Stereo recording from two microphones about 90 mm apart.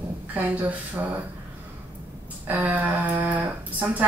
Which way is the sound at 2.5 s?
20° right (ahead or behind).